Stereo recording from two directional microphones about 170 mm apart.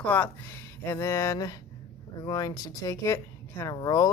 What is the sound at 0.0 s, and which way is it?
Speech, 10° left (ahead or behind).